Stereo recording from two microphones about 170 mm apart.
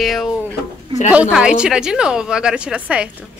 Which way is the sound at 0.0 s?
Centre (ahead or behind).